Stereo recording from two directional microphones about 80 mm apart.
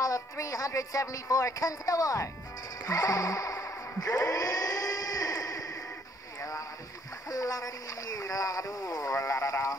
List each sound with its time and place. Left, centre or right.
0.0 s speech: left
2.8 s music: left
7.2 s speech: left